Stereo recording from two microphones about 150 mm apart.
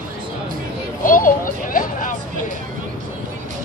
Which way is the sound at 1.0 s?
65° left (ahead or behind).